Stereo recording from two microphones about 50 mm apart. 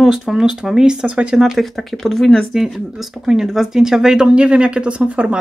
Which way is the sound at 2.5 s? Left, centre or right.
Centre.